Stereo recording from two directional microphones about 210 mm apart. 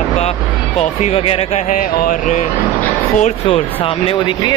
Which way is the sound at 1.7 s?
40° left (ahead or behind).